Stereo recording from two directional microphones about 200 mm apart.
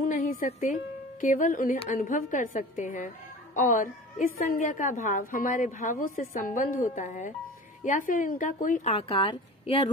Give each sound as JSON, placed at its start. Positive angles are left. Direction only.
{"t": 0.1, "sound": "music", "side_deg": 40}
{"t": 1.2, "sound": "a woman's voice", "side_deg": 40}
{"t": 8.9, "sound": "a woman's voice", "side_deg": 25}